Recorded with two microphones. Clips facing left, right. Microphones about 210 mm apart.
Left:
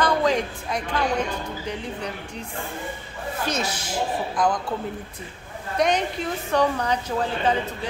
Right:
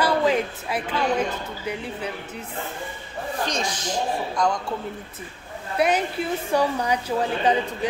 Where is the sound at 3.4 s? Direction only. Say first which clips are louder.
Left 2 dB; 5° left (ahead or behind).